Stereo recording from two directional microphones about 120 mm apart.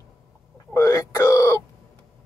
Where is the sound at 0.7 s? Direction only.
25° left (ahead or behind).